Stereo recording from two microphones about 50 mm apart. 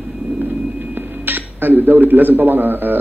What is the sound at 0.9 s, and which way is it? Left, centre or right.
Speech, right.